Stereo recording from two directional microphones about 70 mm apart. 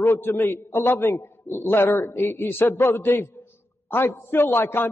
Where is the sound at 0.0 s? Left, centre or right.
Left.